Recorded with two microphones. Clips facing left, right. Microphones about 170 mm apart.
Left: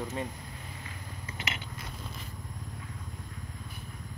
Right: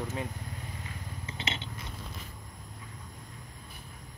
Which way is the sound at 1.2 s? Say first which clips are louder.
Right 2 dB; 25° right (ahead or behind).